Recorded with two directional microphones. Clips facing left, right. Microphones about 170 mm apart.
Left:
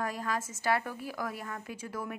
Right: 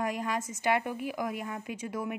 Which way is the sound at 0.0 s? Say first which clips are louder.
Right 2 dB; 15° right (ahead or behind).